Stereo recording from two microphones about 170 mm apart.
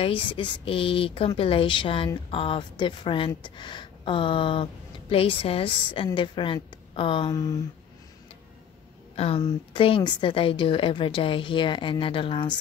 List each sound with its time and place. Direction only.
0.0 s a woman's voice: 30° left (ahead or behind)
9.1 s a woman's voice: 35° left (ahead or behind)